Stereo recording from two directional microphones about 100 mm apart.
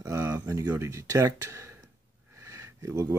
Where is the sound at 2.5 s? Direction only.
30° right (ahead or behind).